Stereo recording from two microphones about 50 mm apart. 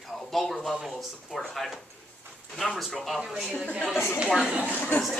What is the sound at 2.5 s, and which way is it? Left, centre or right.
Speech, centre.